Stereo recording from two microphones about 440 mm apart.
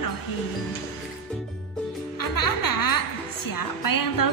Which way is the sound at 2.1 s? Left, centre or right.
Left.